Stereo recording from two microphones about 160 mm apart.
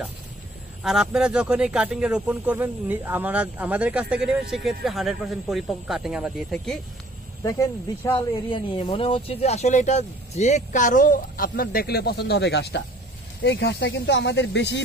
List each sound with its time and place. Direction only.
0.8 s speech: 5° right (ahead or behind)
7.4 s speech: 15° left (ahead or behind)
8.5 s speech: 35° left (ahead or behind); by 14.8 s 90° left